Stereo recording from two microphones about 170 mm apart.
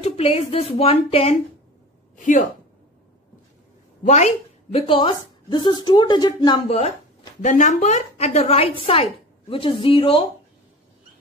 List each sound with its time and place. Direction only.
0.0 s a woman's voice: 35° left (ahead or behind)
2.1 s a woman's voice: 50° left (ahead or behind)
4.0 s a woman's voice: 40° left (ahead or behind); by 6.8 s 25° left (ahead or behind)
7.4 s a woman's voice: 45° left (ahead or behind)